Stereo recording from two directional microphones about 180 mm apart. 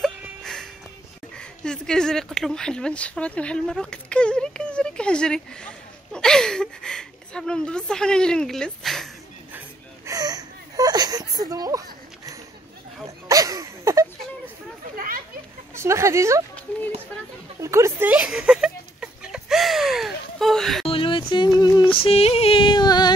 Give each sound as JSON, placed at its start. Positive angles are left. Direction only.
{"t": 0.4, "sound": "music", "side_deg": 5}
{"t": 1.3, "sound": "speech", "side_deg": 5}
{"t": 10.0, "sound": "whimper", "side_deg": -20}
{"t": 13.3, "sound": "a sound", "side_deg": -20}
{"t": 15.0, "sound": "speech", "side_deg": -50}
{"t": 15.7, "sound": "speech", "side_deg": -15}
{"t": 17.6, "sound": "speech", "side_deg": -15}
{"t": 18.1, "sound": "a sound", "side_deg": 0}
{"t": 20.8, "sound": "a sound", "side_deg": 30}
{"t": 21.9, "sound": "female singing", "side_deg": 35}